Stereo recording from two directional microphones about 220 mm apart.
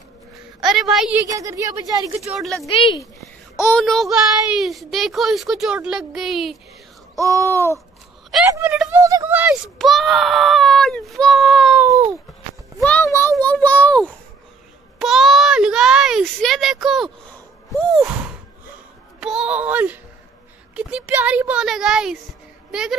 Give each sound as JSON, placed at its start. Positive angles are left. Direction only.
{"t": 0.7, "sound": "speech", "side_deg": 0}
{"t": 1.3, "sound": "speech", "side_deg": -15}
{"t": 2.2, "sound": "speech", "side_deg": 0}
{"t": 2.6, "sound": "a child's voice", "side_deg": 20}
{"t": 7.2, "sound": "speech", "side_deg": -15}
{"t": 7.4, "sound": "a child's voice", "side_deg": 10}
{"t": 8.5, "sound": "speech", "side_deg": -10}
{"t": 12.8, "sound": "a child's voice", "side_deg": 10}
{"t": 19.1, "sound": "speech", "side_deg": 0}